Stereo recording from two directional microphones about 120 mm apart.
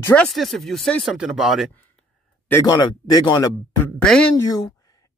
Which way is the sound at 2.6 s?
35° left (ahead or behind).